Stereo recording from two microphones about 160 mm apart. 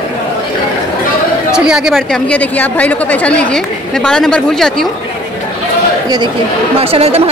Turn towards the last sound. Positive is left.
turn(degrees=-40)  # may be behind; listen again after turning